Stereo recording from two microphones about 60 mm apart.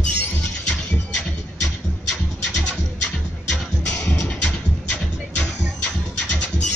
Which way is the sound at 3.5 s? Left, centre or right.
Centre.